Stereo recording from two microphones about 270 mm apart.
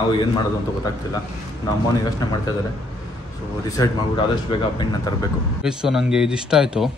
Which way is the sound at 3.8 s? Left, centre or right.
Centre.